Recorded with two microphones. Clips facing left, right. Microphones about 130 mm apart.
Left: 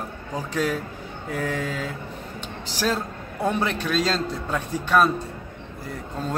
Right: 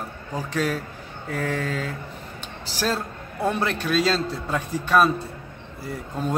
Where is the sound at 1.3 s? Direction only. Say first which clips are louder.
Right 1 dB; 10° left (ahead or behind).